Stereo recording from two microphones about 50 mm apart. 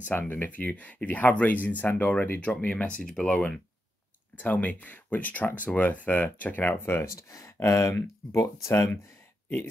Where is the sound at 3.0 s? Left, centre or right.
Centre.